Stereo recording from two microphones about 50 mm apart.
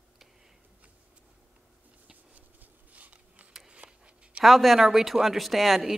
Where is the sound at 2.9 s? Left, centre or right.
Right.